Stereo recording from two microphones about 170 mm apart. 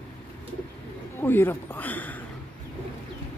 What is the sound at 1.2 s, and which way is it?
Speech, 10° left (ahead or behind).